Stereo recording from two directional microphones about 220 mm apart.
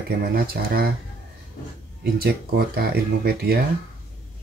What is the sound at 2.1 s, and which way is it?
Speech, 45° right (ahead or behind).